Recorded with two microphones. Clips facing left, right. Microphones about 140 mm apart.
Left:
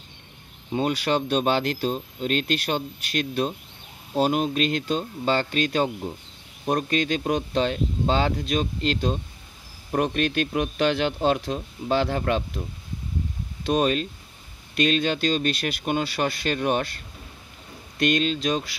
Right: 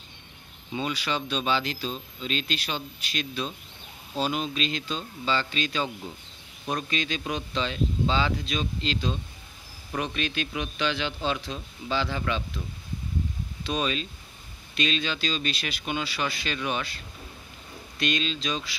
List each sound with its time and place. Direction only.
0.7 s speech: 50° left (ahead or behind)
13.7 s speech: 50° left (ahead or behind)